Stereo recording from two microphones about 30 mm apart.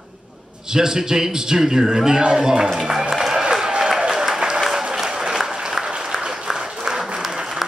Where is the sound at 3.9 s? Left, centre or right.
Centre; by 6.5 s right.